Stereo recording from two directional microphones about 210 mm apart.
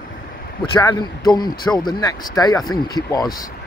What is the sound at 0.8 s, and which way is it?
A man's voice, 15° left (ahead or behind).